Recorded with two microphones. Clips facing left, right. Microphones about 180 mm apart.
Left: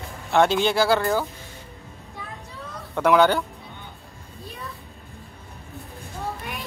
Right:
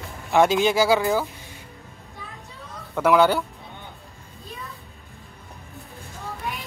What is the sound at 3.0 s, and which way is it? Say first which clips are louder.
Speech: even; 5° right (ahead or behind).